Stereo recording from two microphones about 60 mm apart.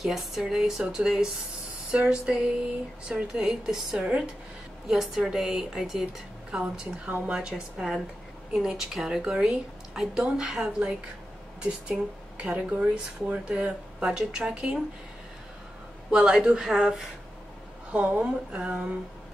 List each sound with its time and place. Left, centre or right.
0.0 s speech: centre; by 4.3 s right
4.8 s speech: centre
16.1 s speech: centre
17.9 s speech: right